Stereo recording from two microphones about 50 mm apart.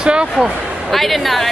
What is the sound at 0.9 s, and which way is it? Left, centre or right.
Speech, centre.